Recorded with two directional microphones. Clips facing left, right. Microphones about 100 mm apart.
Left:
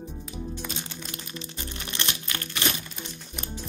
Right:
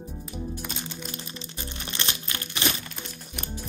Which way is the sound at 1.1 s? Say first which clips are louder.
Left 1 dB; 30° right (ahead or behind).